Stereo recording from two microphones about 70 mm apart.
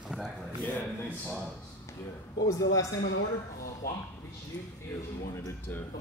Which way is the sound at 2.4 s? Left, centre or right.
Left.